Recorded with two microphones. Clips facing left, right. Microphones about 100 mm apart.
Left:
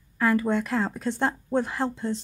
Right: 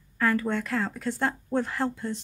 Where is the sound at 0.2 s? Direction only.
10° left (ahead or behind).